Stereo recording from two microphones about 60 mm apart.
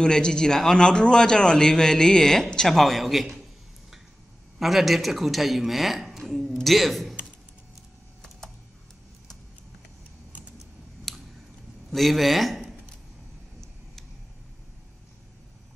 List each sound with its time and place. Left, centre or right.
0.0 s a man's voice: centre
4.6 s speech: centre
11.1 s a sound: centre
11.9 s speech: centre